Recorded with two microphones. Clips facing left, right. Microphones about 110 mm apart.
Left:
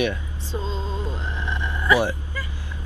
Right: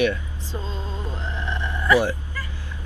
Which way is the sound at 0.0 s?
20° left (ahead or behind).